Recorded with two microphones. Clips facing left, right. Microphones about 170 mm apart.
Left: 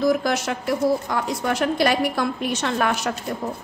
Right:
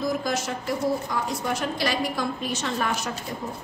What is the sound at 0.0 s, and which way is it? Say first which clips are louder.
A woman's voice: left 6 dB; 75° left (ahead or behind).